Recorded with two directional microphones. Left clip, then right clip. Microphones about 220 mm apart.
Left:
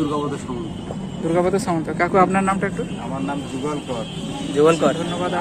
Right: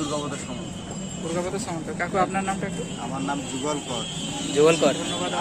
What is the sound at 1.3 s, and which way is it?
Speech, 40° left (ahead or behind).